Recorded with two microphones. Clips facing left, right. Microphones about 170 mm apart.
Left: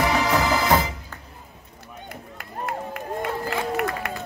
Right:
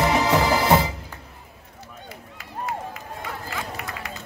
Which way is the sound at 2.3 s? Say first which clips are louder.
Even; 55° left (ahead or behind).